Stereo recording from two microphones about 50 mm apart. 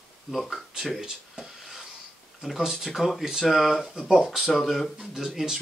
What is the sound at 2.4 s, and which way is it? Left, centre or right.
Speech, centre.